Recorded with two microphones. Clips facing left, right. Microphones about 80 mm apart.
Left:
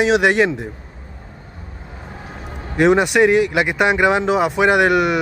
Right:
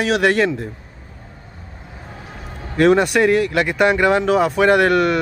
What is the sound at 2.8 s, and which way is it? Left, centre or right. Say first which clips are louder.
Speech: even; centre.